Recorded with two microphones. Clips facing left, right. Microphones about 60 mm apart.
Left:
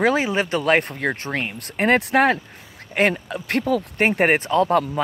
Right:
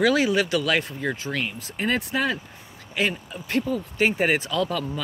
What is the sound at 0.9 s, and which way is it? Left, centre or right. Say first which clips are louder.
Speech: left 4 dB; left.